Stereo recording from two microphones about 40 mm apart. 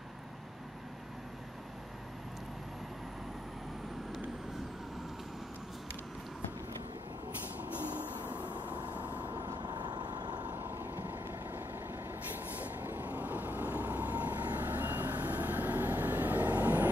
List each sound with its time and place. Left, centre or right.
7.5 s vehicle: right
10.5 s vehicle: right